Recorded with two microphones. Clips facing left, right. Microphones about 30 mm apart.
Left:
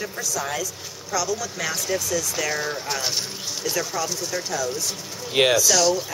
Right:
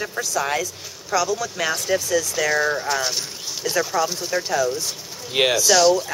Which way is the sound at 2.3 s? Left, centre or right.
Centre.